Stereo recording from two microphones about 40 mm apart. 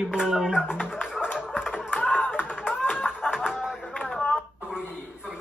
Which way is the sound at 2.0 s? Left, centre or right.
Left.